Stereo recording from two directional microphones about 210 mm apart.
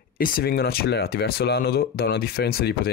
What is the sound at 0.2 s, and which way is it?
Speech, 45° left (ahead or behind).